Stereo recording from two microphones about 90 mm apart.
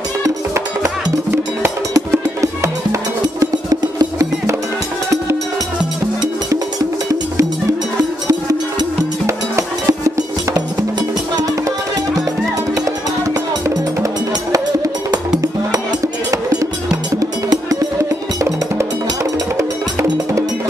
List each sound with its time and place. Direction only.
2.0 s music: 35° right (ahead or behind)
3.8 s music: 45° right (ahead or behind)
8.3 s music: 35° right (ahead or behind)
12.8 s music: 40° right (ahead or behind)
17.2 s music: 40° right (ahead or behind)
19.5 s cowbell: 35° right (ahead or behind)